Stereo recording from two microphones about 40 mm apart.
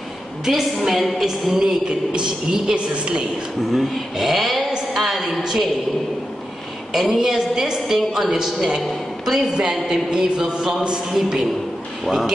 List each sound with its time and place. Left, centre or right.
0.5 s a woman's voice: centre
1.1 s a woman's voice: centre
3.7 s a woman's voice: centre
6.9 s a woman's voice: centre
9.7 s a woman's voice: centre
11.1 s a woman's voice: centre